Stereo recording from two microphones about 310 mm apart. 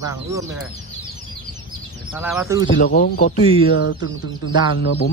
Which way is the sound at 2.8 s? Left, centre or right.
Left.